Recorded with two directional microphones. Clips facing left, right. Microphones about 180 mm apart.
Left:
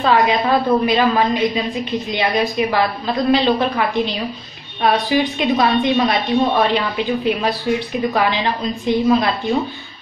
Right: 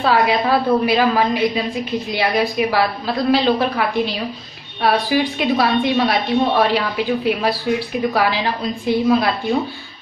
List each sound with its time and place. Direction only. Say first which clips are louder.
0.0 s a woman's voice: left 1 dB; 5° right (ahead or behind)